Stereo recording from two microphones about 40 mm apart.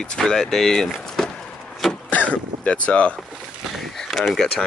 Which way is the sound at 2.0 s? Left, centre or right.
Left.